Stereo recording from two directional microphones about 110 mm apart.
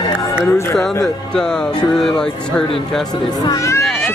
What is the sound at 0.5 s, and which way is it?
Speech, 25° left (ahead or behind).